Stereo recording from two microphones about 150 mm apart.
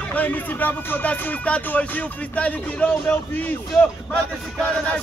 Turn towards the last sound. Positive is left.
turn(degrees=5)  # may be behind; listen again after turning